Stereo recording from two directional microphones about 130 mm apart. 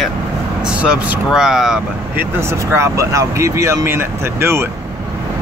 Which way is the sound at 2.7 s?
25° right (ahead or behind).